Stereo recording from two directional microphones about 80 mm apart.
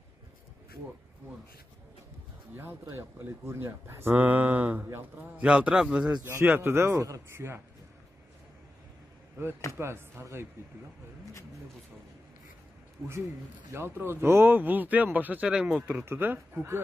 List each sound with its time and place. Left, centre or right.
2.5 s a man's voice: right; by 6.1 s centre
6.2 s a man's voice: right
9.7 s a man's voice: right
13.7 s speech: right
15.4 s a man's voice: centre
16.1 s speech: right